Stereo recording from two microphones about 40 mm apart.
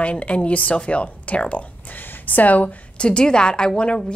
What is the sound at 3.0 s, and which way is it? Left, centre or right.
A woman's voice, left.